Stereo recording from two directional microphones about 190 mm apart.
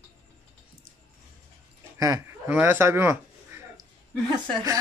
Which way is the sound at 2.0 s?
15° right (ahead or behind).